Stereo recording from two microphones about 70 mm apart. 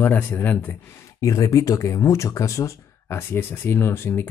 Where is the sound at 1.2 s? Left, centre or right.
Left.